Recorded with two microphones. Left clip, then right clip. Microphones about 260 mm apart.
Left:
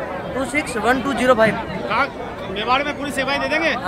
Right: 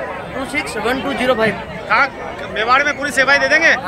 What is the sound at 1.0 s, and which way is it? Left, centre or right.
Speech, centre.